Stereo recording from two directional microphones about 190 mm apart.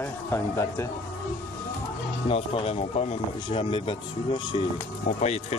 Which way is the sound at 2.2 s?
30° left (ahead or behind).